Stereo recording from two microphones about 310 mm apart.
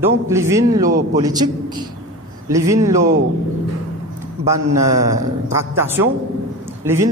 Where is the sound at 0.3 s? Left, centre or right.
Centre.